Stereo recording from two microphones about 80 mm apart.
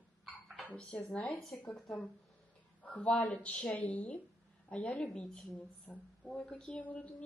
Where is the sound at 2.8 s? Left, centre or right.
Centre.